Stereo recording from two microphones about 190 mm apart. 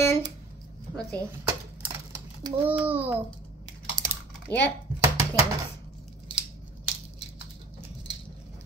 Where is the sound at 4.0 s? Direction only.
45° right (ahead or behind).